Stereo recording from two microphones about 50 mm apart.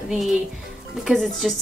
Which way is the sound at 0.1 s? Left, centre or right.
Centre.